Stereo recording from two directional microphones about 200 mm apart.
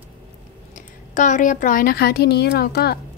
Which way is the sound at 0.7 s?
40° left (ahead or behind).